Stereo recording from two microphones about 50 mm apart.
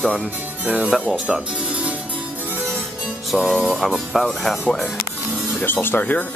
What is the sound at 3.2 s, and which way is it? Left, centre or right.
Speech, centre.